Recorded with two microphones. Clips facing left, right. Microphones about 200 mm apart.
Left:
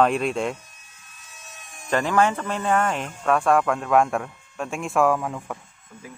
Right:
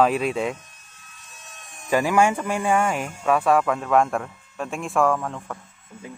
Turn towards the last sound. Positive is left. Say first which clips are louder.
# left 1 dB
turn(degrees=5)  # may be behind; listen again after turning